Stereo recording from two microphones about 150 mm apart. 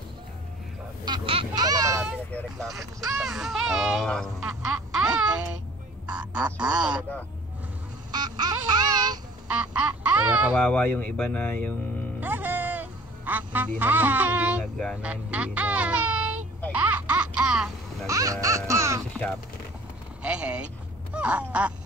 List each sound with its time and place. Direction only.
1.0 s a sound: 35° right (ahead or behind)
2.6 s speech: centre (ahead or behind)
4.9 s music: 5° right (ahead or behind)
6.6 s speech: 5° right (ahead or behind)
8.1 s babbling: 25° right (ahead or behind)
9.5 s duck: 10° right (ahead or behind)
10.6 s speech: 10° left (ahead or behind)
12.2 s music: 10° right (ahead or behind)
15.0 s speech: 10° right (ahead or behind)
16.7 s baby laughter: 10° right (ahead or behind)
18.0 s baby laughter: 20° right (ahead or behind)
20.2 s speech: 5° right (ahead or behind)
21.1 s a sound: 10° right (ahead or behind)